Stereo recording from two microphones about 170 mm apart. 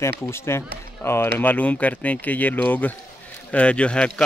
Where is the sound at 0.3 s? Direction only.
15° left (ahead or behind).